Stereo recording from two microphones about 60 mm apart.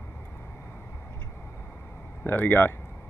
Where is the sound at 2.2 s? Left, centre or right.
Left.